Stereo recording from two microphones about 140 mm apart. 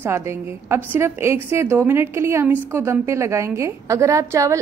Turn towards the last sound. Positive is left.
turn(degrees=-20)  # may be behind; listen again after turning